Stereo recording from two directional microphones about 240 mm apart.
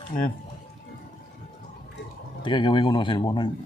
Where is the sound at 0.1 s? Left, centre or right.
Left.